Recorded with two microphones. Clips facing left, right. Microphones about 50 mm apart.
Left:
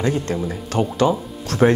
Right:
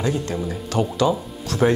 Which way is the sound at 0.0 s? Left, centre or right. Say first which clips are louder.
Left 2 dB; left.